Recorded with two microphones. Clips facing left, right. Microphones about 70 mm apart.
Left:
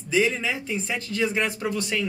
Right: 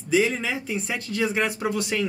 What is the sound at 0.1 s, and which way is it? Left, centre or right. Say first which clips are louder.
Speech: right 1 dB; centre.